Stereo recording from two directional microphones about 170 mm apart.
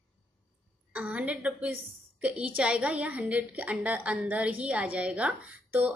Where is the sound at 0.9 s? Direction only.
10° right (ahead or behind).